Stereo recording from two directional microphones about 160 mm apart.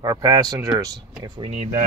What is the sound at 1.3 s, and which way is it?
Speech, 40° right (ahead or behind).